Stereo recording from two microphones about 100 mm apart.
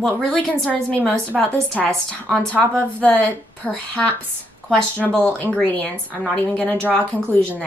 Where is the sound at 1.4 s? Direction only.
15° left (ahead or behind).